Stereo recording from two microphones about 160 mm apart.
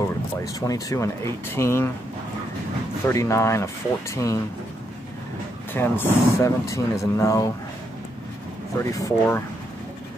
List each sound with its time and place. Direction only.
0.4 s speech: 20° left (ahead or behind)
3.1 s speech: 15° left (ahead or behind)
5.7 s speech: 15° left (ahead or behind)
8.7 s speech: 20° left (ahead or behind)